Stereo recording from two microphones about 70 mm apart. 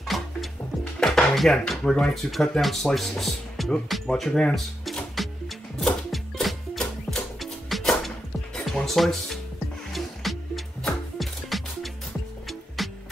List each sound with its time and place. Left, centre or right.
0.0 s music: centre
0.9 s dishes: centre
1.7 s speech: centre
5.2 s music: centre